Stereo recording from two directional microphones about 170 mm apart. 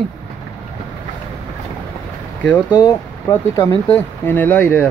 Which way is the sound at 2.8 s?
20° left (ahead or behind).